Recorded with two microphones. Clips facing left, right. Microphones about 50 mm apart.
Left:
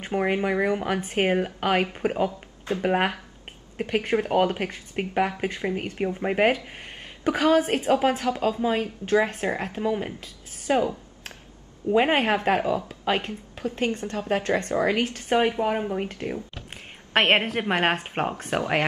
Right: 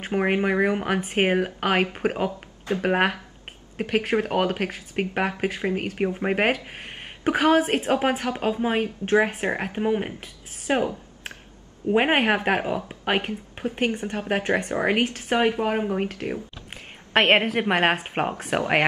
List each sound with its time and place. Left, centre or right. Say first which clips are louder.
0.0 s speech: right 2 dB; centre
7.5 s speech: right 1 dB; centre
8.3 s speech: left 1 dB; right
11.9 s a woman's voice: right 1 dB; right
15.0 s speech: even; centre
16.7 s a sound: right 2 dB; centre
17.6 s speech: right 2 dB; centre
18.6 s a woman's voice: right 3 dB; right